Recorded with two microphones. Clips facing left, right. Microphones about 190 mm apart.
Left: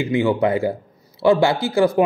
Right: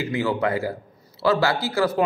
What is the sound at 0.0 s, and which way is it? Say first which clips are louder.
A man's voice: left 5 dB; 25° left (ahead or behind).